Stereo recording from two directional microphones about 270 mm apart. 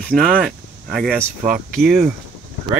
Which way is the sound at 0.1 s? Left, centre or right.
Centre.